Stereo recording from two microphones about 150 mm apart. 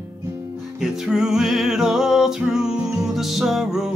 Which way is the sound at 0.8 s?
5° right (ahead or behind).